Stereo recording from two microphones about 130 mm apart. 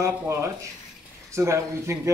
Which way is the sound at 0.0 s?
20° right (ahead or behind).